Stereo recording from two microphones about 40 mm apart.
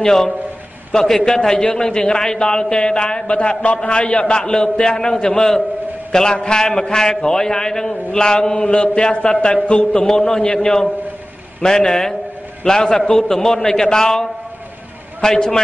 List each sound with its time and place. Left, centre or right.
0.0 s a man's voice: centre
8.5 s a man's voice: left
10.1 s a man's voice: centre